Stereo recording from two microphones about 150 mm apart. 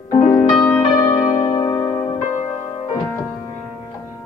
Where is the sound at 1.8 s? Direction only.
20° left (ahead or behind).